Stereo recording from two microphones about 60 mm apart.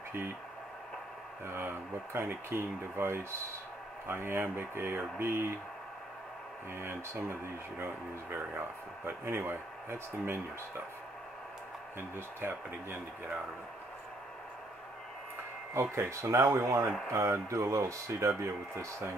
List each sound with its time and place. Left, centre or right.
1.4 s speech: right
6.7 s speech: right
15.7 s speech: right